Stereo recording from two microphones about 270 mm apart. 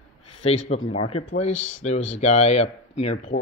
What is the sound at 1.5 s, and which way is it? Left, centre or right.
Speech, left.